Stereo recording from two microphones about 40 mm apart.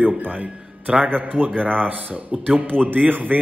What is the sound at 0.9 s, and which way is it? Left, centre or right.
Speech, right.